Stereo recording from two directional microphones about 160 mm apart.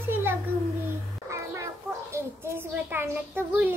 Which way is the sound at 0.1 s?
15° right (ahead or behind).